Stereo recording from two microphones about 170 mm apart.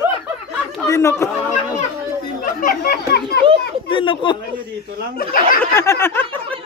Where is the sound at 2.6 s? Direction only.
60° left (ahead or behind).